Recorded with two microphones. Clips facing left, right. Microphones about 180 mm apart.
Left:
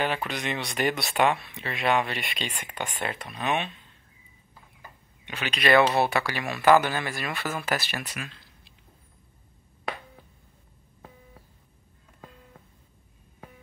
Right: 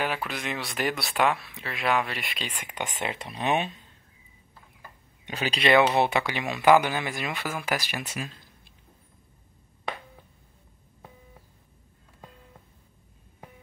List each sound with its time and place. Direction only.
0.0 s speech: 5° right (ahead or behind)
2.7 s speech: 20° right (ahead or behind)
5.2 s speech: 40° right (ahead or behind)
5.6 s speech: 15° right (ahead or behind)
8.2 s a sound: 45° right (ahead or behind)